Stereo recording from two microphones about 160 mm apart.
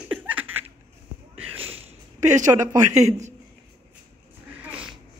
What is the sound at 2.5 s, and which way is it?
Speech, 20° right (ahead or behind).